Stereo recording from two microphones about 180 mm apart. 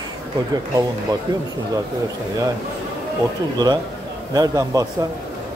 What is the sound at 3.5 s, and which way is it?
Speech, 20° right (ahead or behind).